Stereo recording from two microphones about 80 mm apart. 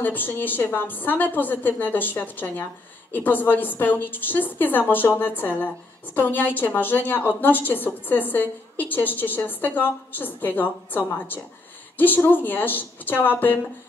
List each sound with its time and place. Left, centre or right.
0.0 s a woman's voice: left